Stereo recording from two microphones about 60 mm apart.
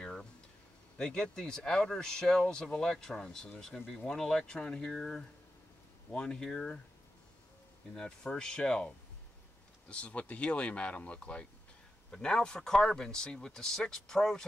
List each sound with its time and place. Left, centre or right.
0.0 s a sound: centre
0.9 s speech: centre
7.9 s speech: centre